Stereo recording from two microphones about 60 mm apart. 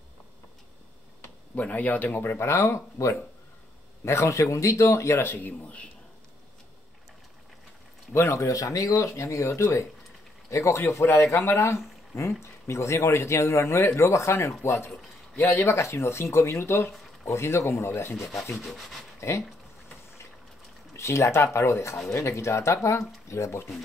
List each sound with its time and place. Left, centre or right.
1.5 s speech: left
2.2 s speech: left
5.2 s speech: left
8.1 s a man's voice: left
18.3 s sanding: centre
19.1 s a sound: left
20.9 s speech: left